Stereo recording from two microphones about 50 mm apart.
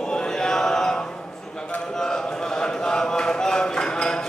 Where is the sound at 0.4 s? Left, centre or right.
Centre.